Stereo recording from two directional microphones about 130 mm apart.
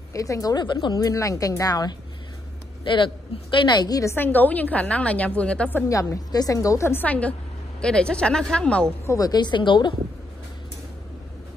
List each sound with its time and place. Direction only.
0.1 s a woman's voice: 25° left (ahead or behind); by 8.8 s 10° left (ahead or behind)
9.0 s a woman's voice: 25° left (ahead or behind)